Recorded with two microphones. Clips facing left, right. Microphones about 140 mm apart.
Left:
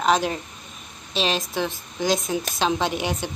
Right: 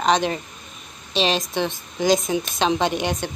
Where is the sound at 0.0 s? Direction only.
5° left (ahead or behind).